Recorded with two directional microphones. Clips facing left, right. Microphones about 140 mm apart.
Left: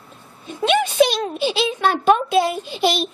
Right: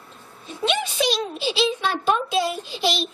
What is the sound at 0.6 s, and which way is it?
A child's voice, 55° left (ahead or behind).